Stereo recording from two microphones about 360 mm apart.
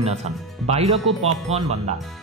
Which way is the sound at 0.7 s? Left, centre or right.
Centre.